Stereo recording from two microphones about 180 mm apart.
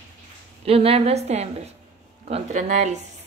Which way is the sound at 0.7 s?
35° right (ahead or behind).